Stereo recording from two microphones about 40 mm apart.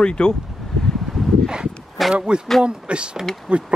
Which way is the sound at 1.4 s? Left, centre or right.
Centre.